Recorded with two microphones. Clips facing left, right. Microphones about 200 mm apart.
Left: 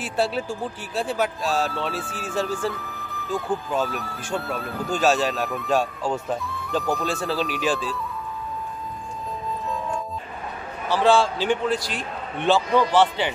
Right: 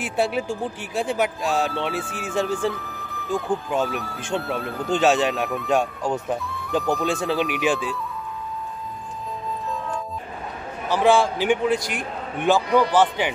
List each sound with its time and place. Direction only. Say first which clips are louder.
0.0 s a man's voice: right 1 dB; 15° right (ahead or behind)
2.7 s music: right 1 dB; centre (ahead or behind)
3.8 s speech: right 2 dB; centre (ahead or behind)
4.9 s a man's voice: right 2 dB; 20° right (ahead or behind)
6.4 s music: even; centre (ahead or behind)
6.8 s speech: right 2 dB; centre (ahead or behind)
7.2 s a man's voice: right 1 dB; 20° right (ahead or behind)
10.9 s a man's voice: right 1 dB; 15° right (ahead or behind)